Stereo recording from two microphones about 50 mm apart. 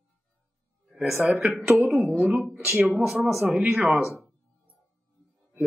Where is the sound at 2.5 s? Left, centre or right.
Centre.